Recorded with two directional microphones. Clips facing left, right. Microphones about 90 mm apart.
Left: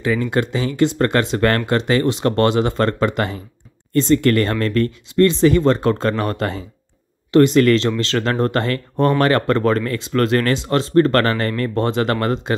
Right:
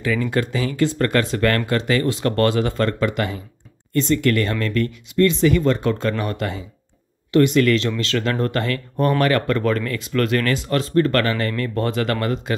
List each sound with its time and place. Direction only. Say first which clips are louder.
0.0 s speech: left 2 dB; 25° left (ahead or behind)